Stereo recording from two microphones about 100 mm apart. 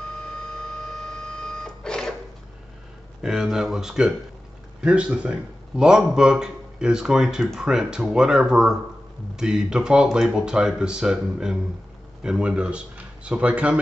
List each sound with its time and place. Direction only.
0.2 s printer: 10° left (ahead or behind)
3.2 s a man's voice: 5° right (ahead or behind)